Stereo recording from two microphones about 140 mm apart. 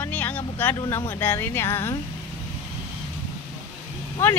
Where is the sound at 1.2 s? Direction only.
15° left (ahead or behind).